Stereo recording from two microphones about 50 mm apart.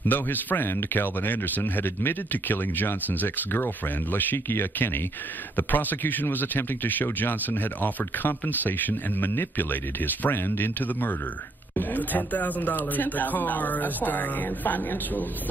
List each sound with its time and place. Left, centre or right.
0.0 s speech: left